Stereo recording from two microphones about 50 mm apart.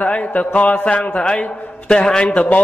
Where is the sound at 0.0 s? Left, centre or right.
Left.